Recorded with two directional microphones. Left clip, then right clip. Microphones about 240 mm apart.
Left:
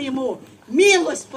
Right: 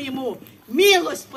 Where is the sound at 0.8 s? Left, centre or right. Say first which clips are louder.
Left 1 dB; centre.